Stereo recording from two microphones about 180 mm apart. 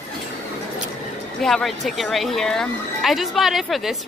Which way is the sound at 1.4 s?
Centre (ahead or behind).